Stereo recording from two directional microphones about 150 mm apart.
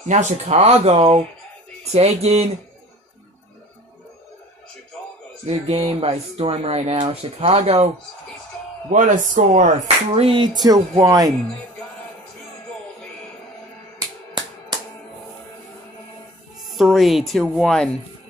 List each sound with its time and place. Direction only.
0.1 s speech: 50° right (ahead or behind)
5.5 s speech: 40° right (ahead or behind)
8.9 s speech: 60° right (ahead or behind); by 11.3 s 25° right (ahead or behind)
13.9 s music: 30° right (ahead or behind)
16.7 s speech: centre (ahead or behind)